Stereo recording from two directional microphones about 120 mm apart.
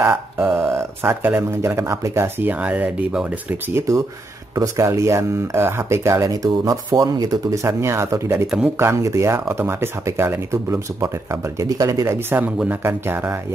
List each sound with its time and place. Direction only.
0.0 s a sound: 20° right (ahead or behind)
0.5 s speech: 20° right (ahead or behind)
4.6 s speech: 25° right (ahead or behind)